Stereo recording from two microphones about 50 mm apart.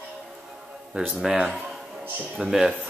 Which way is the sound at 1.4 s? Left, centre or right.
Centre.